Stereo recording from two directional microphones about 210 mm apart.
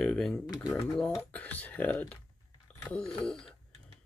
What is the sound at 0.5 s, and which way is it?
Speech, 15° left (ahead or behind).